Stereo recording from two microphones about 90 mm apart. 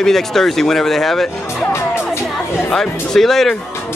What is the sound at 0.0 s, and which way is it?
Speech, 5° left (ahead or behind).